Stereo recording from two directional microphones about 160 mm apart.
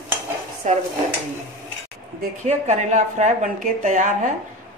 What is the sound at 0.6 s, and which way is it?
Speech, 45° right (ahead or behind).